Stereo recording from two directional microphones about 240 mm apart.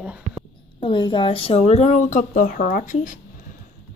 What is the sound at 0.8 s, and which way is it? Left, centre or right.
Speech, centre.